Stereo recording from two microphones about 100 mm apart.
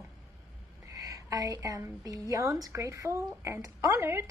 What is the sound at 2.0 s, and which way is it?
Speech, 35° right (ahead or behind).